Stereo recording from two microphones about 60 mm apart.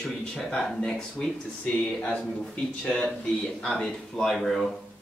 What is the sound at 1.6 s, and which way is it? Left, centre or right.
Speech, left.